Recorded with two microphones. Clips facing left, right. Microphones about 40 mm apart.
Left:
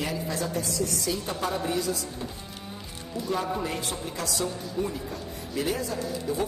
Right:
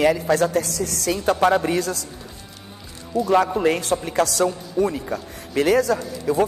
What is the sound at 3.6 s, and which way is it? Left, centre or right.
A woman's voice, right.